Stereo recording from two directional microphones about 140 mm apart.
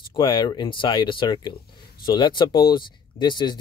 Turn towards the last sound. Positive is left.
turn(degrees=30)  # may be behind; listen again after turning